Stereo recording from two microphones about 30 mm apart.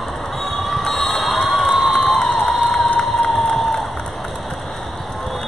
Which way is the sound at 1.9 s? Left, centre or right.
Centre.